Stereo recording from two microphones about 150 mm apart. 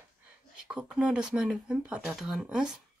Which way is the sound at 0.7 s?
5° right (ahead or behind).